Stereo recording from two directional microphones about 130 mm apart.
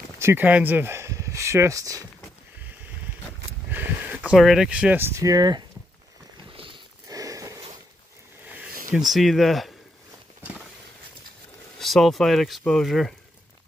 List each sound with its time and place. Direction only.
0.2 s speech: 15° right (ahead or behind)
3.7 s speech: 15° right (ahead or behind); by 5.6 s 30° right (ahead or behind)
6.5 s a sound: 40° right (ahead or behind)
7.1 s a sound: 25° right (ahead or behind)
8.9 s speech: centre (ahead or behind)
11.8 s speech: centre (ahead or behind)